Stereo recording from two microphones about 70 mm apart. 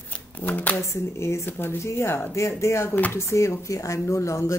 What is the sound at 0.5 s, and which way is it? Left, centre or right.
Speech, left.